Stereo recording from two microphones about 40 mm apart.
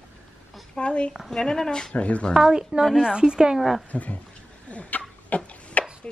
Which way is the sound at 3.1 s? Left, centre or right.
Centre.